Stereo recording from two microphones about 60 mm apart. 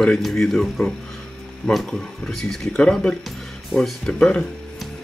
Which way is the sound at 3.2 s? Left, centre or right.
Centre.